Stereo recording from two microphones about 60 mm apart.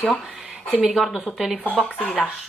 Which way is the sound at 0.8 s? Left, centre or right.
Centre.